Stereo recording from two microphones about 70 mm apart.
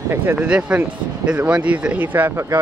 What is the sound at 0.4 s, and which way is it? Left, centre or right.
Speech, centre.